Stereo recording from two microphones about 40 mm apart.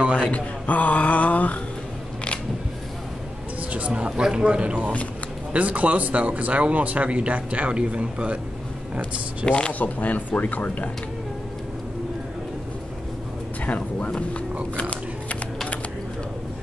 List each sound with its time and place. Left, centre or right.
0.0 s speech: right
0.3 s speech: left
3.7 s a man's voice: right
4.5 s a man's voice: right
9.5 s speech: left
9.8 s speech: left
13.7 s speech: left
14.1 s a sound: left